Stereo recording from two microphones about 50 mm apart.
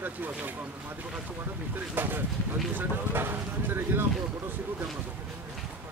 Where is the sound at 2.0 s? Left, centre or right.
Right.